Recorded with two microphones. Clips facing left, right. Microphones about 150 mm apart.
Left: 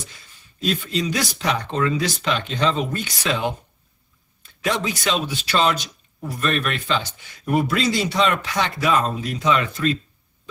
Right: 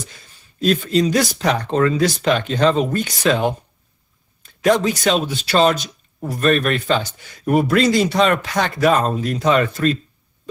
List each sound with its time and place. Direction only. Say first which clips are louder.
0.6 s a man's voice: right 7 dB; 45° right (ahead or behind)